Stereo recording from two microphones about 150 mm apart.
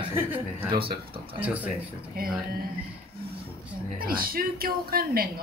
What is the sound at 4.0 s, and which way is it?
Speech, 75° right (ahead or behind).